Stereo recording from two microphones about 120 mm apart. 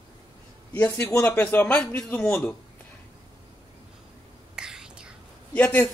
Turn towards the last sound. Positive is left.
turn(degrees=10)  # may be behind; listen again after turning